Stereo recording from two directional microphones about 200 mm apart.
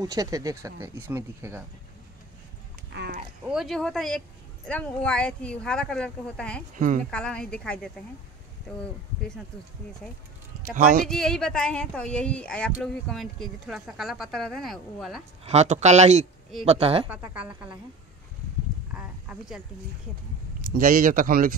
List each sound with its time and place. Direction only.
0.0 s speech: 20° right (ahead or behind)
2.9 s a sound: 55° right (ahead or behind)
3.4 s a woman's voice: centre (ahead or behind)
10.7 s speech: 40° right (ahead or behind)
11.1 s a woman's voice: centre (ahead or behind)
15.4 s speech: 35° right (ahead or behind)
17.1 s speech: 5° right (ahead or behind)
18.9 s a sound: 5° right (ahead or behind)
20.7 s speech: 45° right (ahead or behind)